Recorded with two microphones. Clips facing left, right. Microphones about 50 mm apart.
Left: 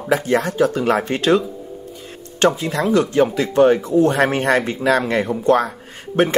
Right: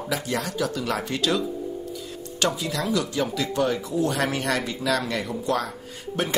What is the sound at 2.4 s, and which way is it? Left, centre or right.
Speech, left.